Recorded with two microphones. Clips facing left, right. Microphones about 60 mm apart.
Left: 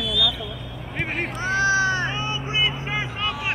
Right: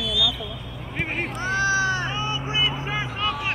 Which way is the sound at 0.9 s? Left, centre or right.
Centre.